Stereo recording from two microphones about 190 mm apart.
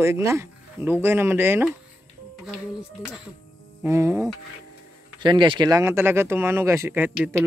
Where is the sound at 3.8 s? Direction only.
15° right (ahead or behind).